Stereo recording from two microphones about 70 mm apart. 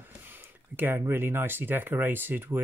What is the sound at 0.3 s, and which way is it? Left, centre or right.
Speech, right.